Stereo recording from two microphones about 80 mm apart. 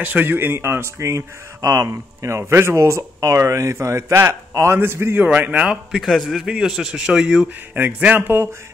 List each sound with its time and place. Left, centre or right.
0.0 s speech: right
5.9 s a man's voice: centre
7.7 s speech: right